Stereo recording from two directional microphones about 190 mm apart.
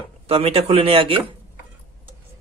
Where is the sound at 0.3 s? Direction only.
30° right (ahead or behind).